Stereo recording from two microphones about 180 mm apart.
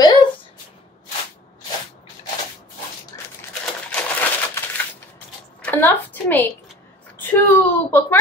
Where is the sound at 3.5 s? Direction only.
5° left (ahead or behind).